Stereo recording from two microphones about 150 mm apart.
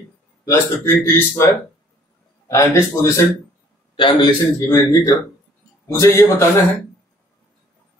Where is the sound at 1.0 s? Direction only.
15° left (ahead or behind).